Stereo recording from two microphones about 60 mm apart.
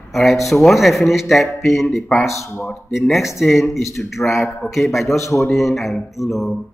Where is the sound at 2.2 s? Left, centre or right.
Left.